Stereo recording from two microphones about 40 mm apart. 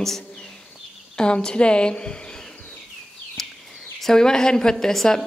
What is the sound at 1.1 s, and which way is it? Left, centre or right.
A woman's voice, left.